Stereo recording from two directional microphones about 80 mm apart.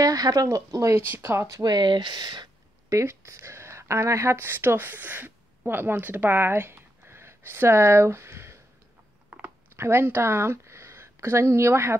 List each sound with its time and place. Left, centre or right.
0.0 s speech: right
1.6 s speech: right
2.9 s speech: right
9.8 s speech: right